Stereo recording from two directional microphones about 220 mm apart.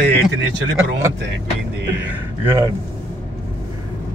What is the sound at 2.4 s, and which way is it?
Speech, 15° right (ahead or behind).